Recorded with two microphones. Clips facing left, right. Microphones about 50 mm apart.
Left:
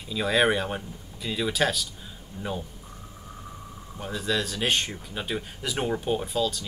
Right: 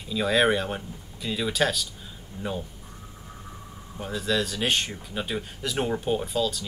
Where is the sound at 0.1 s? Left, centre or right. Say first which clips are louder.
Right 1 dB; centre.